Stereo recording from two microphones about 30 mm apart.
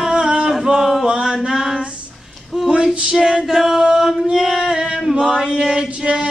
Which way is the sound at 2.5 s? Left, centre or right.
Right.